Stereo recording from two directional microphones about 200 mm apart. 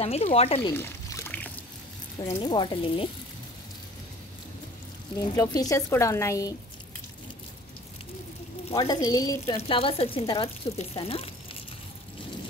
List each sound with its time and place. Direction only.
0.0 s speech: 30° left (ahead or behind)
0.7 s a sound: 15° left (ahead or behind)
2.2 s speech: 20° left (ahead or behind)
5.3 s a woman's voice: 15° left (ahead or behind)
8.6 s speech: 25° left (ahead or behind)
9.6 s speech: 30° left (ahead or behind)